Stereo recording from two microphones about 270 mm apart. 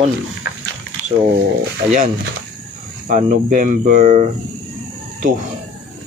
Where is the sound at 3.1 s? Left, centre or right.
Right.